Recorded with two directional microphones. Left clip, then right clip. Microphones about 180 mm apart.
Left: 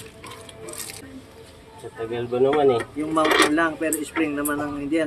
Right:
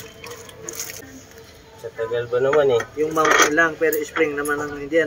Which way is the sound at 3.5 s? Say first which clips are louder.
Right 4 dB; 50° left (ahead or behind).